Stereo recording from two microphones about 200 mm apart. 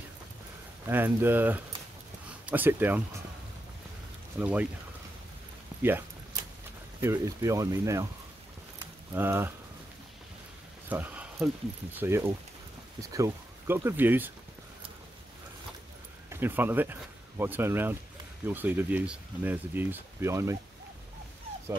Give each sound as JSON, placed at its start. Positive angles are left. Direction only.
{"t": 0.8, "sound": "speech", "side_deg": -10}
{"t": 4.4, "sound": "speech", "side_deg": -5}
{"t": 5.8, "sound": "speech", "side_deg": -10}
{"t": 9.1, "sound": "speech", "side_deg": -10}
{"t": 10.9, "sound": "speech", "side_deg": -10}
{"t": 16.3, "sound": "speech", "side_deg": -10}